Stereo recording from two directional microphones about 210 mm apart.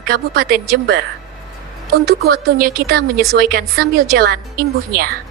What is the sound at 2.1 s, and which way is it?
A woman's voice, 50° right (ahead or behind).